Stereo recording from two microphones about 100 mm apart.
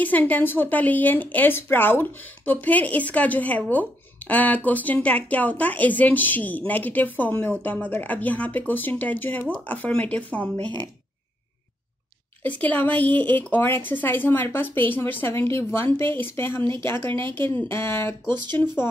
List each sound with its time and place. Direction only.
0.0 s speech: 15° left (ahead or behind)
12.4 s a woman's voice: 15° left (ahead or behind)